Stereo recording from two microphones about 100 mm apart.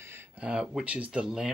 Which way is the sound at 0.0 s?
25° right (ahead or behind).